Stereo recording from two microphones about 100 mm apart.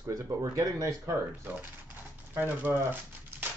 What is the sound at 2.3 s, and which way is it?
Speech, 20° right (ahead or behind).